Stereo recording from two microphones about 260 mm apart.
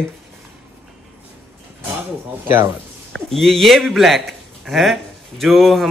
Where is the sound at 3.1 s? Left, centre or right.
Centre.